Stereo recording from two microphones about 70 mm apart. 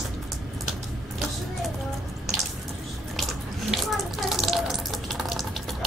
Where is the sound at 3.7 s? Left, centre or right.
Centre.